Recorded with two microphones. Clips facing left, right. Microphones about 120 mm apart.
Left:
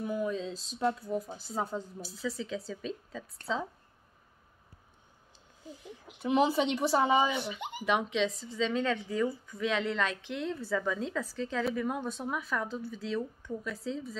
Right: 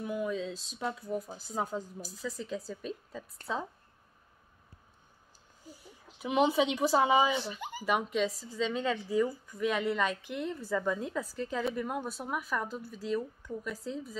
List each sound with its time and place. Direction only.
0.0 s speech: centre (ahead or behind)
6.2 s speech: centre (ahead or behind)
7.1 s a woman's voice: 15° right (ahead or behind)
7.3 s speech: 20° left (ahead or behind)
7.8 s a woman's voice: 5° right (ahead or behind)